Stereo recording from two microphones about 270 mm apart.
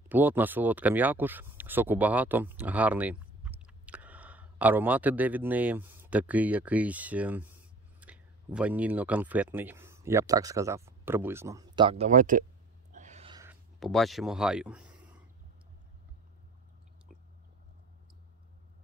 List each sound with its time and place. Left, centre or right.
0.1 s speech: centre; by 12.4 s right
12.9 s a sound: right
13.4 s speech: centre